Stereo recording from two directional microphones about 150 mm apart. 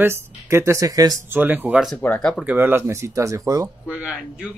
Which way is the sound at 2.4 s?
15° right (ahead or behind).